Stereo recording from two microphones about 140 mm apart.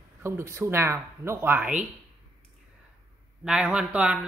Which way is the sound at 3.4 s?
5° right (ahead or behind).